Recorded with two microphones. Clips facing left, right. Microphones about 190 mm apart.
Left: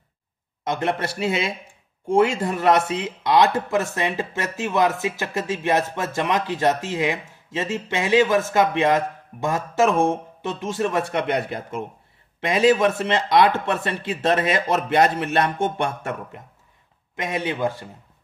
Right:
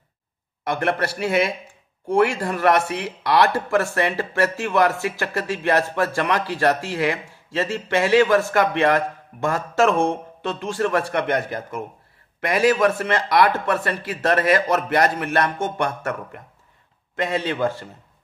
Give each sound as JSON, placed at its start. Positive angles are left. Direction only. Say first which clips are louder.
{"t": 0.7, "sound": "speech", "louder": "right 1 dB", "side_deg": 20}